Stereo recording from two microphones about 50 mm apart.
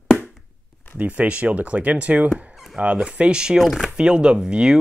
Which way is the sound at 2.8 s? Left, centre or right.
Right.